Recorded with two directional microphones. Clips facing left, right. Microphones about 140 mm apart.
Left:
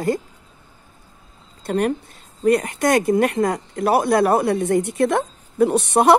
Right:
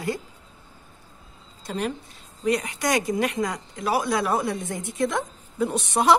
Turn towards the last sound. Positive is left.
turn(degrees=60)  # may be behind; listen again after turning